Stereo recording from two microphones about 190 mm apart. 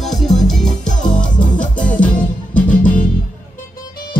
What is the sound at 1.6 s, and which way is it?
Music, 45° left (ahead or behind).